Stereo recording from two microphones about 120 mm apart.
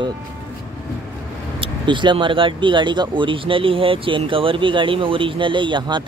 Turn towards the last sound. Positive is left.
turn(degrees=-40)  # may be behind; listen again after turning